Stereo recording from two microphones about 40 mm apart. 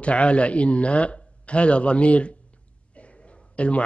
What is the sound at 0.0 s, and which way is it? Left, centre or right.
A man's voice, left.